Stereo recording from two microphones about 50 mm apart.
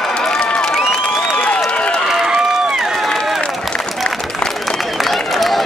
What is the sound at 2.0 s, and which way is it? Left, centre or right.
Run, centre.